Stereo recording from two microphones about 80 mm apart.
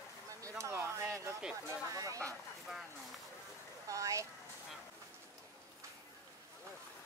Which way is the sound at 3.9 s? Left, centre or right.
Right.